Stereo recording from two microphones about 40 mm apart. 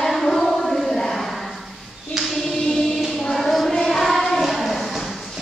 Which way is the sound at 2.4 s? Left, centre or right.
Centre.